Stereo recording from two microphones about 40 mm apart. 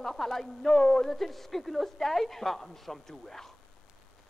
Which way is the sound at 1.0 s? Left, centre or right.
Centre.